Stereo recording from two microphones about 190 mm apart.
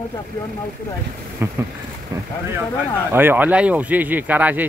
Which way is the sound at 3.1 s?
10° right (ahead or behind).